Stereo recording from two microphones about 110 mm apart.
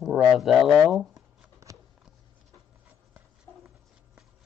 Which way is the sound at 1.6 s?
25° right (ahead or behind).